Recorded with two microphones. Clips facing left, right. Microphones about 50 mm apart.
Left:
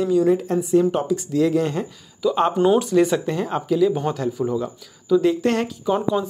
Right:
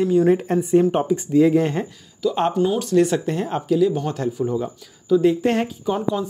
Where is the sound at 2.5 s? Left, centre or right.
Left.